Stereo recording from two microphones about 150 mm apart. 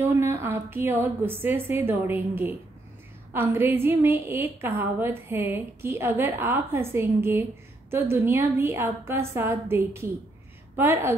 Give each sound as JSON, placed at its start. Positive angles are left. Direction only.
{"t": 0.0, "sound": "a woman's voice", "side_deg": -15}